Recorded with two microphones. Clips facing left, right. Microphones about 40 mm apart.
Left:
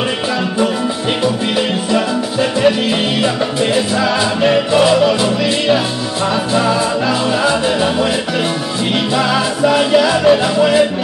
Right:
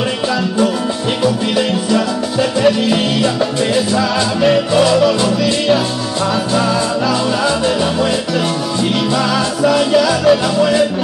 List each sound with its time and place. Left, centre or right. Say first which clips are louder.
1.2 s music: right 2 dB; centre
9.1 s music: left 1 dB; centre